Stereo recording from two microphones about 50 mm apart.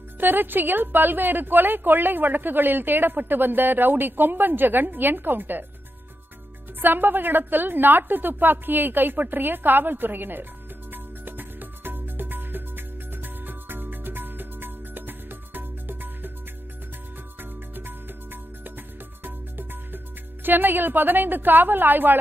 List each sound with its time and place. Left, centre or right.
0.2 s a woman's voice: right
6.8 s a woman's voice: right
10.9 s music: right
17.4 s music: right
20.4 s a woman's voice: right